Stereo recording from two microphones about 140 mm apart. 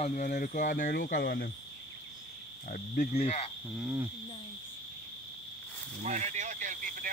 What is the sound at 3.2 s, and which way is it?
Speech, 50° left (ahead or behind).